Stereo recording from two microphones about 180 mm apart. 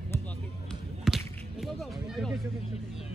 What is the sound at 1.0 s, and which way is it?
Whip, centre (ahead or behind).